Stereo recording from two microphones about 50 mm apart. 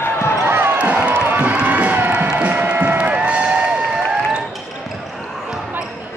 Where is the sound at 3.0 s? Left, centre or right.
Right.